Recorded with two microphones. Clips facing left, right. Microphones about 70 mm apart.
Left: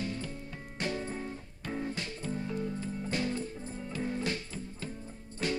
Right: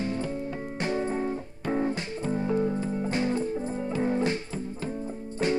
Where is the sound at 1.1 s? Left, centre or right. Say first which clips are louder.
Right 10 dB; right.